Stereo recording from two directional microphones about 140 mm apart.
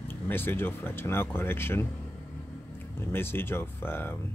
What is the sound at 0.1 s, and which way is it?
Speech, 15° left (ahead or behind).